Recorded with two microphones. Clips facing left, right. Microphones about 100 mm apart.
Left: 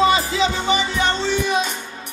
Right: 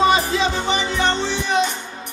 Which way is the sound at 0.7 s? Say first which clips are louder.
Even; 15° left (ahead or behind).